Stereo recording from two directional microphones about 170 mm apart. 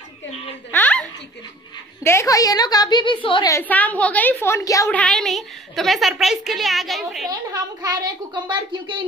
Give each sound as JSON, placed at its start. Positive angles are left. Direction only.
{"t": 0.7, "sound": "a sound", "side_deg": 10}
{"t": 2.0, "sound": "a woman's voice", "side_deg": 20}
{"t": 3.4, "sound": "a woman's voice", "side_deg": 15}
{"t": 4.8, "sound": "a woman's voice", "side_deg": 0}
{"t": 7.8, "sound": "a woman's voice", "side_deg": -25}